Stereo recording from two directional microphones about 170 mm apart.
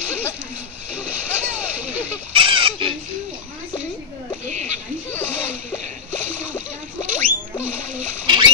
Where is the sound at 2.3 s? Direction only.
30° right (ahead or behind).